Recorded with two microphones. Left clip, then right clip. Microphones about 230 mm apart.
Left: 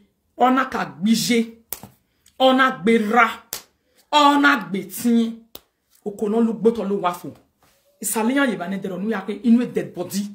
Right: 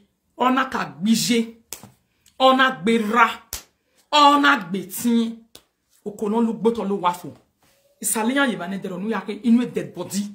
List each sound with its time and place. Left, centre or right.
0.4 s a woman's voice: centre
1.7 s a sound: left
2.2 s a woman's voice: centre